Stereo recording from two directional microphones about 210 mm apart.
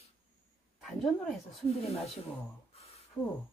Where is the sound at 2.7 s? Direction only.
30° left (ahead or behind).